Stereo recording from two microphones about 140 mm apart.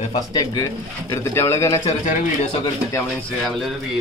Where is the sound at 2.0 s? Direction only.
60° left (ahead or behind).